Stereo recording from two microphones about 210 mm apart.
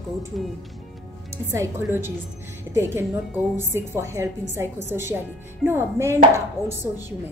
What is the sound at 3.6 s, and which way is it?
A woman's voice, 10° right (ahead or behind).